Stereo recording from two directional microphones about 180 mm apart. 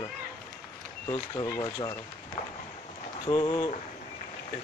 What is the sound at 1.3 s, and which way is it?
Speech, 15° left (ahead or behind).